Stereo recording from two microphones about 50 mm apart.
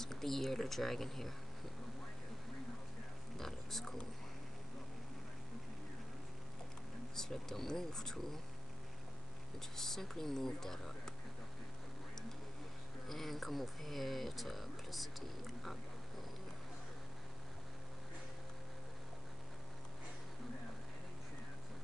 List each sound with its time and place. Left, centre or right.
0.0 s speech: centre
3.3 s oink: centre
7.2 s speech: centre
9.6 s speech: centre
13.1 s speech: centre